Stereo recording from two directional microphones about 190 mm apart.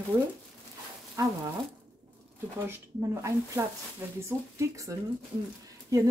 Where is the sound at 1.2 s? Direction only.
15° right (ahead or behind).